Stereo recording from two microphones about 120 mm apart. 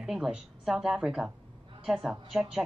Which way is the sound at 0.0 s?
5° right (ahead or behind).